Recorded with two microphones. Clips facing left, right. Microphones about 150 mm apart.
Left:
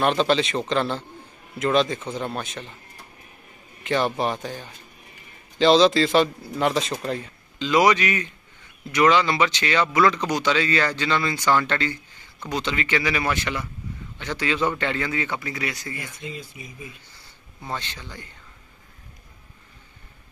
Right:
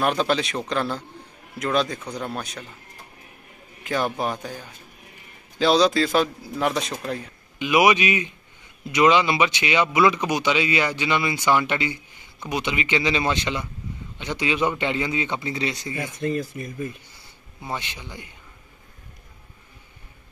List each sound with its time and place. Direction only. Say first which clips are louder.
0.0 s speech: left 2 dB; centre (ahead or behind)
3.8 s speech: left 2 dB; centre (ahead or behind)
7.5 s a man's voice: even; 15° right (ahead or behind)
16.5 s speech: right 9 dB; 50° right (ahead or behind)
17.1 s speech: right 1 dB; 15° right (ahead or behind)